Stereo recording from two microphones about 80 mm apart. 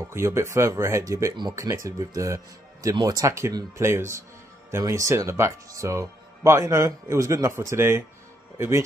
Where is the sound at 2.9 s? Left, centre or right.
Right.